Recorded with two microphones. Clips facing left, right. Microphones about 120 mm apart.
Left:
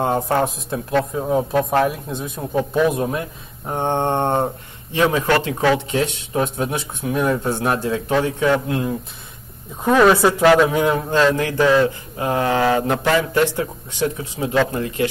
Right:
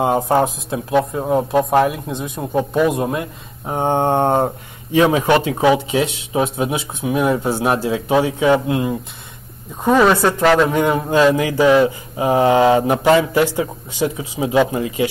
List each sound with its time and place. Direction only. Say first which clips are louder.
0.0 s a man's voice: right 3 dB; 5° right (ahead or behind)
1.5 s speech: right 3 dB; 20° right (ahead or behind)
1.8 s a man's voice: right 3 dB; centre (ahead or behind)